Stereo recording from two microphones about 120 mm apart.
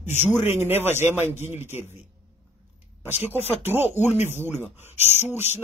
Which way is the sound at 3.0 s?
15° right (ahead or behind).